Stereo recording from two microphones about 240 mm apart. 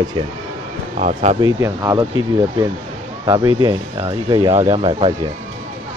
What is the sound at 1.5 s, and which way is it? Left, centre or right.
Speech, centre.